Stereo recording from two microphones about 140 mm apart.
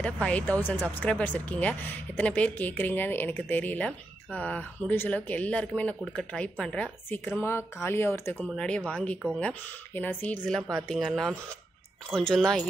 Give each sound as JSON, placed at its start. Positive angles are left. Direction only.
{"t": 0.0, "sound": "speech", "side_deg": 10}